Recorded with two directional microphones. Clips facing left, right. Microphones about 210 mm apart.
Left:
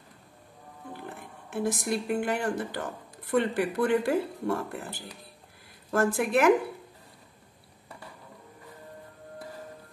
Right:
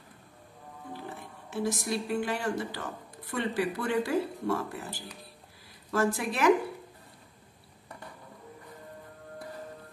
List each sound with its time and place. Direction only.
1.5 s speech: 55° left (ahead or behind)